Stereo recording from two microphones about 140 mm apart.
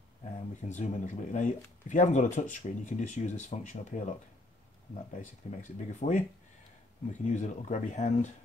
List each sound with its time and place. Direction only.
0.6 s speech: 60° left (ahead or behind)
5.1 s speech: 60° left (ahead or behind)